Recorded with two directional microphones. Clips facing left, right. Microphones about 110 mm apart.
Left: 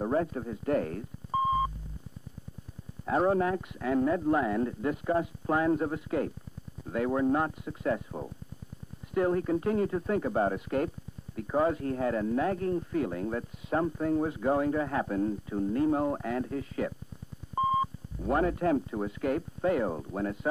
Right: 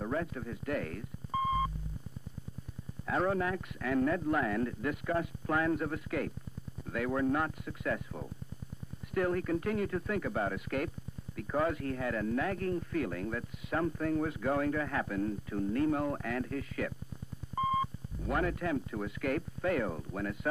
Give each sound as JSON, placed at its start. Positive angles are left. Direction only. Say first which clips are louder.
{"t": 0.0, "sound": "speech", "louder": "left 6 dB", "side_deg": 35}
{"t": 3.1, "sound": "speech", "louder": "left 5 dB", "side_deg": 30}